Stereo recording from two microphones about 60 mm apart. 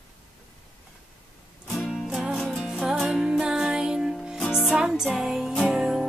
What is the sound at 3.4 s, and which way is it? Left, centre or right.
Music, centre.